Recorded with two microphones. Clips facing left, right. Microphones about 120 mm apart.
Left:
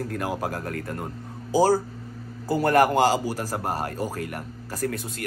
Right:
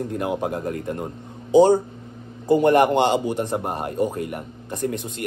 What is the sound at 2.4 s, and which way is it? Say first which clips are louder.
A man's voice: right 4 dB; centre (ahead or behind).